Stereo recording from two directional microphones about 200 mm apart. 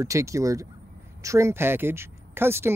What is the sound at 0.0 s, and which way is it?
Speech, 15° right (ahead or behind).